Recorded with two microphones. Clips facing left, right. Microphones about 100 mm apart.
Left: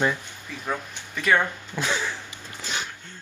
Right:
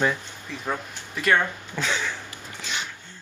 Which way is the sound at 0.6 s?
Centre (ahead or behind).